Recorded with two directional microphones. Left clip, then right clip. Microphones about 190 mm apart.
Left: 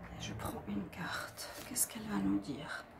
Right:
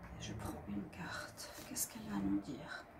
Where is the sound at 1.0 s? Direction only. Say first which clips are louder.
Left 7 dB; 25° left (ahead or behind).